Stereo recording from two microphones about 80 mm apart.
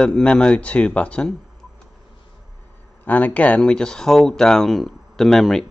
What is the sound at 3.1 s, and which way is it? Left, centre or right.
Speech, centre.